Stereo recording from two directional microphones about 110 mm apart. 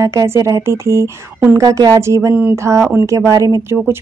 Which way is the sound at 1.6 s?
30° right (ahead or behind).